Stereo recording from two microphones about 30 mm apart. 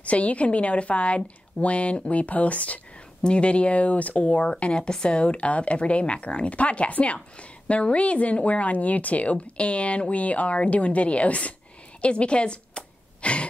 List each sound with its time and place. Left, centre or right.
0.0 s a woman's voice: left
3.2 s a woman's voice: left
4.5 s a woman's voice: left
12.0 s a sound: left